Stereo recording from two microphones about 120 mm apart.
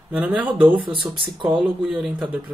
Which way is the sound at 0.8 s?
40° right (ahead or behind).